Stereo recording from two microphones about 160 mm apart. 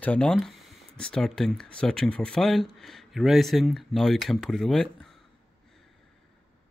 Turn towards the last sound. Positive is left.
turn(degrees=5)  # may be behind; listen again after turning